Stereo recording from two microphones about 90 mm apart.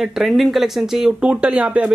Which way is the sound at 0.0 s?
5° right (ahead or behind).